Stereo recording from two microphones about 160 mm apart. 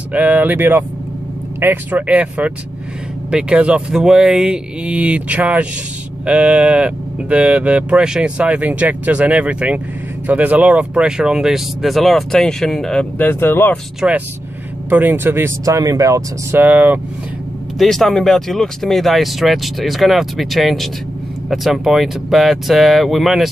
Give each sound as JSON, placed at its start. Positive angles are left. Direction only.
{"t": 0.1, "sound": "speech", "side_deg": -10}
{"t": 14.0, "sound": "speech", "side_deg": -5}
{"t": 17.7, "sound": "speech", "side_deg": 0}